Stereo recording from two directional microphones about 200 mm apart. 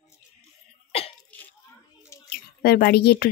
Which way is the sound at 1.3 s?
5° left (ahead or behind).